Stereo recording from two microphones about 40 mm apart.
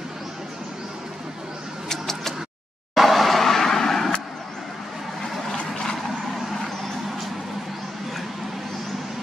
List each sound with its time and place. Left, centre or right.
1.9 s tick-tock: centre
2.9 s vehicle: centre
5.5 s vehicle: centre
6.3 s vehicle: centre